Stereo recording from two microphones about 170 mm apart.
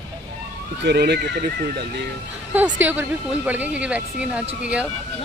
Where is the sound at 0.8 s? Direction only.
75° right (ahead or behind).